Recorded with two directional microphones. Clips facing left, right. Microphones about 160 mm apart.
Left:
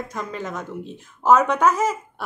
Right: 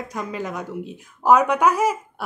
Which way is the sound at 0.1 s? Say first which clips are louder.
Right 1 dB; 10° right (ahead or behind).